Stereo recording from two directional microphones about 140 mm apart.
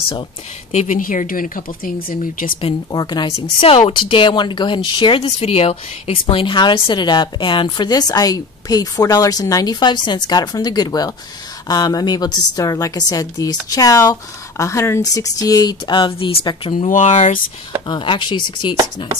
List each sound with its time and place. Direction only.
0.7 s speech: 60° left (ahead or behind); by 2.1 s 90° left
2.6 s speech: 30° left (ahead or behind)
3.3 s a woman's voice: 45° left (ahead or behind)
16.8 s speech: 60° left (ahead or behind)
17.8 s speech: 35° left (ahead or behind)